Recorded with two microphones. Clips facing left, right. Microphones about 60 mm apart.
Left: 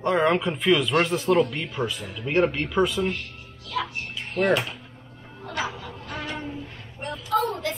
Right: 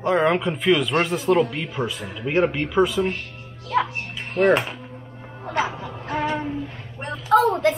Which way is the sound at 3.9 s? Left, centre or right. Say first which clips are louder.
Right 3 dB; right.